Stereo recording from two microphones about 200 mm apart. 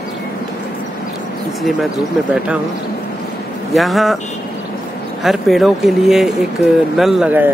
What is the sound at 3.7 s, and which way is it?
Speech, centre (ahead or behind).